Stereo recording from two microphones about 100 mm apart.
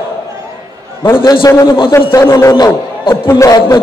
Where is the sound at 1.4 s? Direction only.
30° left (ahead or behind).